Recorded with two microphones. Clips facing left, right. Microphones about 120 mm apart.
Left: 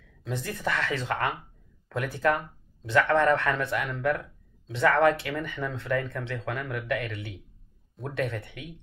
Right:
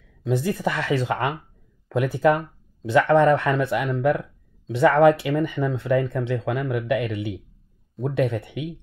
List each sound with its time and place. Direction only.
0.2 s speech: 10° right (ahead or behind)